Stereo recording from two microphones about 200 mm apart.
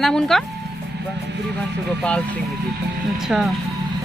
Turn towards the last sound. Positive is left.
turn(degrees=0)  # may be behind; listen again after turning